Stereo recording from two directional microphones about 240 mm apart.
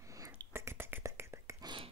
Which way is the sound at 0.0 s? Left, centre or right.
Centre.